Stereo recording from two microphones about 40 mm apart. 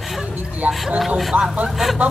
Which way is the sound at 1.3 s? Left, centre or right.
Right.